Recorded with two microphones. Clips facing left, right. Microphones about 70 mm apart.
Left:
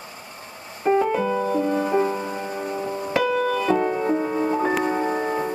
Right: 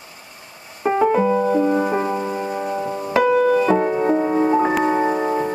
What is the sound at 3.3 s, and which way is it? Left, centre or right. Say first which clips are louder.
Music: right 5 dB; right.